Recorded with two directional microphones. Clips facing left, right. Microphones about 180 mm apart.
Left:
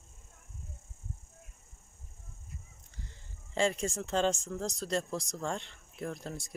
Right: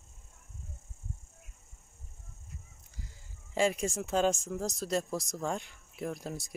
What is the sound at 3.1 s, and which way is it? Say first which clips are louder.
Speech: left 1 dB; 5° right (ahead or behind).